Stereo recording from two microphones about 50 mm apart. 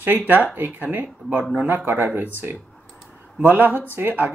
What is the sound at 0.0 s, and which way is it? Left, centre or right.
Speech, right.